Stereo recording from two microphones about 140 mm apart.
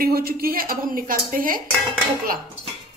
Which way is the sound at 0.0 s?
90° right.